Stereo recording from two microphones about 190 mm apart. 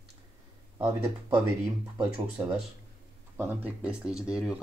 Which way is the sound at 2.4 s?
15° right (ahead or behind).